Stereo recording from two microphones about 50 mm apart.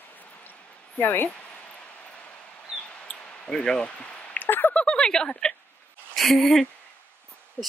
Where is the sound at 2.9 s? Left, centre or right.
Centre.